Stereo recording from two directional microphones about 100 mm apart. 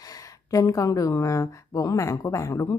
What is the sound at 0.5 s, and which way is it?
Speech, 35° left (ahead or behind).